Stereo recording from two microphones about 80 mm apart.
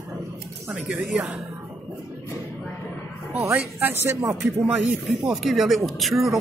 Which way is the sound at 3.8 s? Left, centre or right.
Right.